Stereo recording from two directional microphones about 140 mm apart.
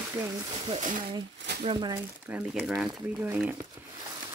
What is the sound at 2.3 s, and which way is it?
Speech, 10° right (ahead or behind).